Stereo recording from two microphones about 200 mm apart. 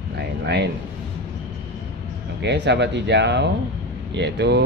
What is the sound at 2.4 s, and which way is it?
Speech, 60° right (ahead or behind).